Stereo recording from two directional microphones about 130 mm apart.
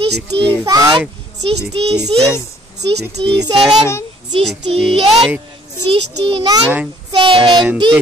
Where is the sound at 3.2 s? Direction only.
45° right (ahead or behind).